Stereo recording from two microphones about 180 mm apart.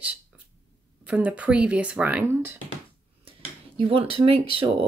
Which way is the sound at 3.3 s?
30° right (ahead or behind).